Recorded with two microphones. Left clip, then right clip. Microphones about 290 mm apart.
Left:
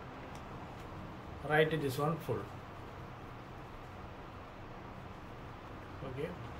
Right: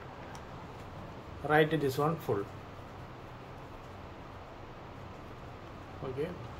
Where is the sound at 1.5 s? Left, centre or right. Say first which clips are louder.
Right 4 dB; centre.